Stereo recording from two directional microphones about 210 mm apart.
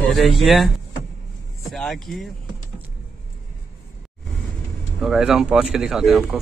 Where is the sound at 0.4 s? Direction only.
Centre (ahead or behind).